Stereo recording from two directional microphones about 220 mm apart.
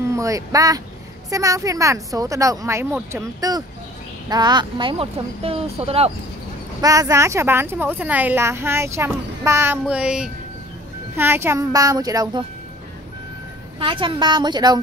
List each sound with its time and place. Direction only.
0.1 s speech: 15° right (ahead or behind)
6.8 s speech: 15° right (ahead or behind)
13.7 s speech: 25° right (ahead or behind)